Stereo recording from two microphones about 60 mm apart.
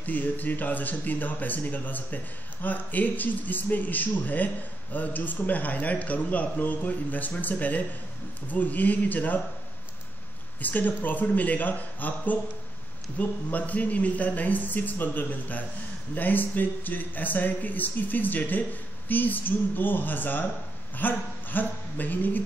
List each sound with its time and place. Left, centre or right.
0.0 s speech: left
10.6 s speech: left